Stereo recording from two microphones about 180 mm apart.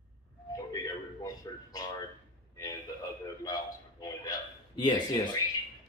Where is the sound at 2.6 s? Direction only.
20° left (ahead or behind).